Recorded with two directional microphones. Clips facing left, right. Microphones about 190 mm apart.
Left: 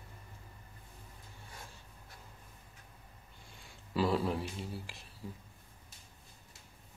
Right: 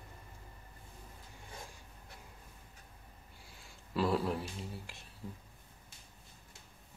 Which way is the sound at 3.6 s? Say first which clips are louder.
Left 1 dB; centre (ahead or behind).